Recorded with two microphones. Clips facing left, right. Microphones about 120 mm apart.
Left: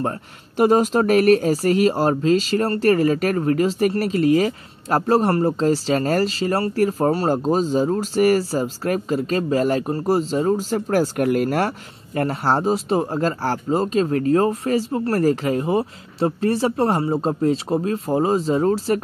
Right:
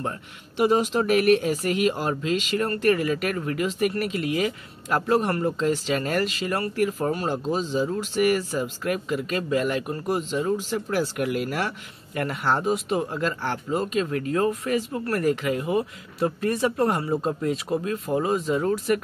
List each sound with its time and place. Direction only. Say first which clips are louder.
0.6 s speech: left 5 dB; 45° left (ahead or behind)